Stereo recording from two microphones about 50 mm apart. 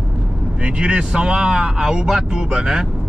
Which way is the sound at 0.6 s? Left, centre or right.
Centre.